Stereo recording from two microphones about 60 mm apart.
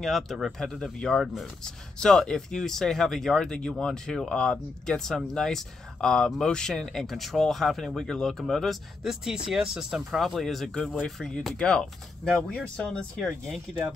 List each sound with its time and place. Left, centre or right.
0.0 s speech: centre
9.2 s speech: centre